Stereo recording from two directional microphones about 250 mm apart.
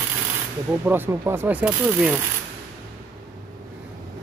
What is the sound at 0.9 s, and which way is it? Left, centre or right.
Speech, centre.